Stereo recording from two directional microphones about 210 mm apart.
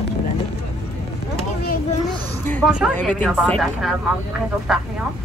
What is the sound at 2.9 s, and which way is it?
Speech, 5° left (ahead or behind).